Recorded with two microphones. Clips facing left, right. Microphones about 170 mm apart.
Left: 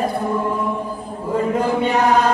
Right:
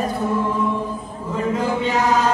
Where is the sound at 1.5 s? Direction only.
60° left (ahead or behind).